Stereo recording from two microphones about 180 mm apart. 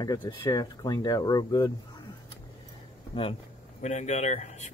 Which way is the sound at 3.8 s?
40° left (ahead or behind).